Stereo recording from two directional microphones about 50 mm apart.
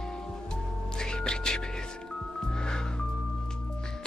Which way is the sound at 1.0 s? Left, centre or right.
Centre.